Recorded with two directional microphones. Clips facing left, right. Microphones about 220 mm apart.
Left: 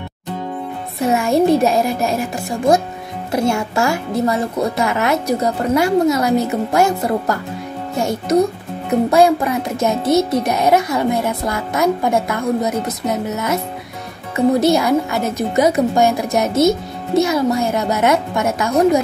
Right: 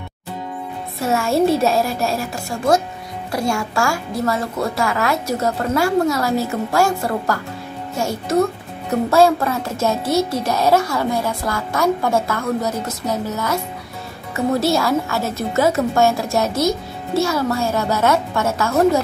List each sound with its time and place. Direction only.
0.9 s a child's voice: 15° left (ahead or behind)